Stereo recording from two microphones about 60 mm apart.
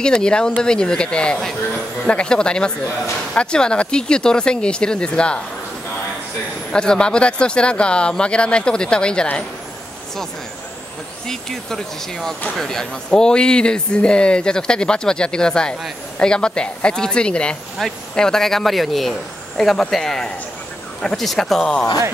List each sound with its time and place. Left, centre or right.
0.0 s speech: centre
6.7 s speech: centre
11.2 s speech: centre